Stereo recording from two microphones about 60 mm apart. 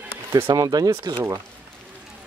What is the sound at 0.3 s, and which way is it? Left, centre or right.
Speech, right.